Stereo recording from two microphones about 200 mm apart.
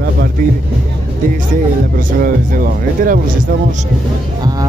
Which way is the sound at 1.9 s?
45° right (ahead or behind).